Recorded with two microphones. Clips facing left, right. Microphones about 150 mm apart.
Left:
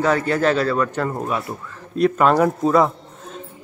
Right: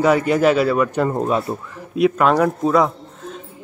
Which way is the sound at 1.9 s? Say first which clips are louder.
Even; centre (ahead or behind).